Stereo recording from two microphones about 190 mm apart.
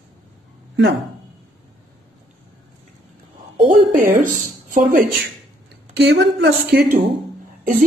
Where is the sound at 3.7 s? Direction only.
45° right (ahead or behind).